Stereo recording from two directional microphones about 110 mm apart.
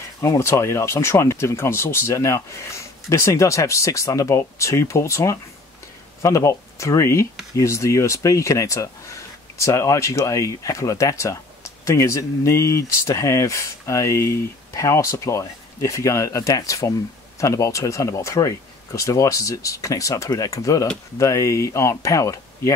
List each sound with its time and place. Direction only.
0.2 s speech: 25° left (ahead or behind)